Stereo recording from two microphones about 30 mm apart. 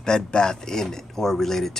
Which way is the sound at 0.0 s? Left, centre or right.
Left.